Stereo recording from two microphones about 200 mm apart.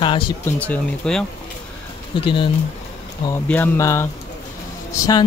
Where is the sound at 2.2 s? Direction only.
25° left (ahead or behind).